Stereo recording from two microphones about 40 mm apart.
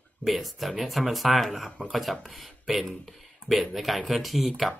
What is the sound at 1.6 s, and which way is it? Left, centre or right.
Speech, left.